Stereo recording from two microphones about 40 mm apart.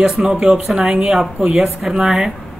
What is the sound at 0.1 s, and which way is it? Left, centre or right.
A woman's voice, centre.